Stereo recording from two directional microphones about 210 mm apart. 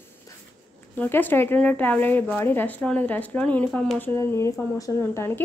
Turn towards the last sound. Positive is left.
turn(degrees=10)  # may be behind; listen again after turning